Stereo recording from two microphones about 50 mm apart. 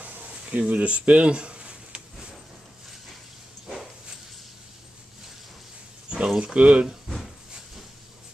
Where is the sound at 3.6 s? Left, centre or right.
Centre.